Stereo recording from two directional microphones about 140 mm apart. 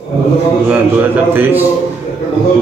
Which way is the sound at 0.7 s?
15° right (ahead or behind).